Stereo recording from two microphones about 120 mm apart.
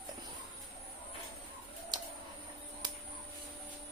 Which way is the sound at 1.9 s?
40° right (ahead or behind).